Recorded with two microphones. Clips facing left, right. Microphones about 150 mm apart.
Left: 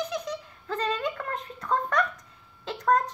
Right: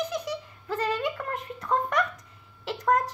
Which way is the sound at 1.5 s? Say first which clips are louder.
Even; 15° right (ahead or behind).